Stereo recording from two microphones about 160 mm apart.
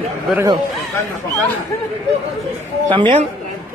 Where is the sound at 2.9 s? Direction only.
30° right (ahead or behind).